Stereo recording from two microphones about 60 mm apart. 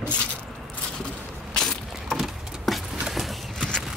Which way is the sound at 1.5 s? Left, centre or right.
Centre.